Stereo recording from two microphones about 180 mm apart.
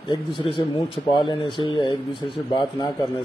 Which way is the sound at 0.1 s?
30° left (ahead or behind).